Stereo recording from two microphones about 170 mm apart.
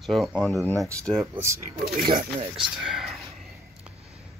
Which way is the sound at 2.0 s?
60° right (ahead or behind).